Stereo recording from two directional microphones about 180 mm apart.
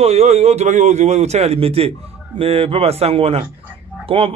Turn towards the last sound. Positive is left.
turn(degrees=-30)  # may be behind; listen again after turning